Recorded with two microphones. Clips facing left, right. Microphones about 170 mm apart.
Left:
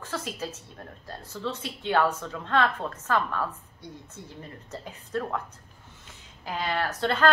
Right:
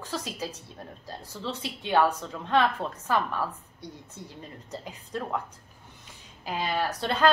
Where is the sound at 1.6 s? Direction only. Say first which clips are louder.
Right 1 dB; 15° right (ahead or behind).